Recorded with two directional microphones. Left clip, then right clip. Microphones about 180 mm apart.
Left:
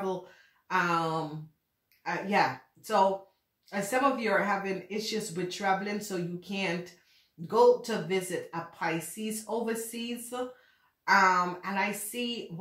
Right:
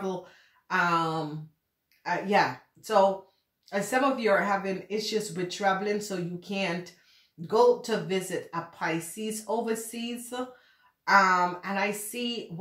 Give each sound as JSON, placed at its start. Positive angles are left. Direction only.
{"t": 0.7, "sound": "speech", "side_deg": -30}